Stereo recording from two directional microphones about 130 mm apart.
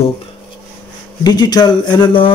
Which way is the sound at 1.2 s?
30° left (ahead or behind).